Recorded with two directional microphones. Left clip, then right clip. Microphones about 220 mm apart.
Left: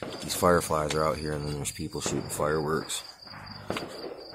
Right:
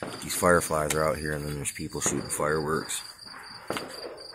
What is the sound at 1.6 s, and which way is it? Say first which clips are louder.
Speech: right 1 dB; 5° left (ahead or behind).